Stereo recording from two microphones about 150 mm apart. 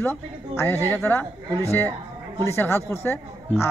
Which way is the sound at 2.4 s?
15° left (ahead or behind).